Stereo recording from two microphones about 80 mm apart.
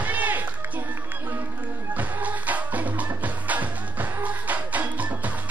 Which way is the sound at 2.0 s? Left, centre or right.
Right.